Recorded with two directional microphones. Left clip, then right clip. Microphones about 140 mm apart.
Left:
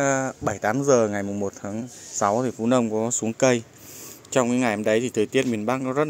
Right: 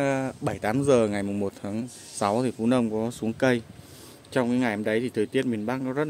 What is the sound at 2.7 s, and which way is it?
Speech, centre (ahead or behind).